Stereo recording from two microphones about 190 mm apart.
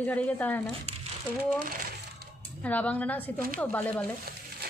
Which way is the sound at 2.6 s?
10° left (ahead or behind).